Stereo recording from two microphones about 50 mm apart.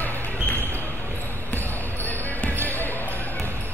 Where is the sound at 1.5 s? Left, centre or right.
Left.